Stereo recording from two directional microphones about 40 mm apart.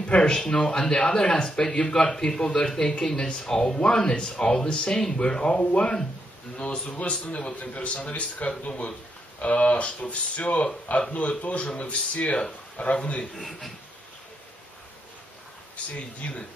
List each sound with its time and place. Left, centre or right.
0.0 s speech: left
6.5 s a man's voice: left
13.3 s speech: centre
15.7 s a man's voice: left